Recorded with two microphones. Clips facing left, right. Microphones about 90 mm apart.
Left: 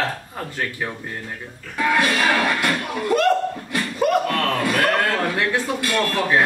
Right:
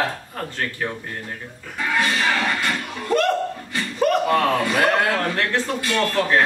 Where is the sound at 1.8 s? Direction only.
65° left (ahead or behind).